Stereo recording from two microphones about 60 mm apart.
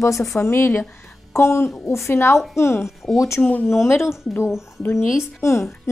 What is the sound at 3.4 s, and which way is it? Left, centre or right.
Speech, left.